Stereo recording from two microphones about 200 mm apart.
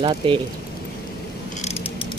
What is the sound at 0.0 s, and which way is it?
Speech, 25° right (ahead or behind).